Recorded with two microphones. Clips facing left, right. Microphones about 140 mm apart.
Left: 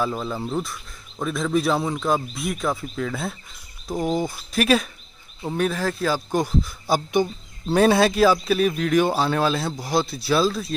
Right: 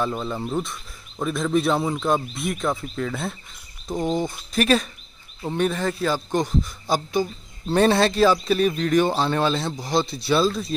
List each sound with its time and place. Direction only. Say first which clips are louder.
0.0 s speech: even; centre (ahead or behind)
7.1 s speech: left 2 dB; 20° left (ahead or behind)
7.7 s speech: left 1 dB; 5° left (ahead or behind)